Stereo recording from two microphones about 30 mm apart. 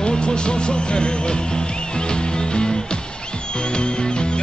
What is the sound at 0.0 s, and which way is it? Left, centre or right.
Music, left.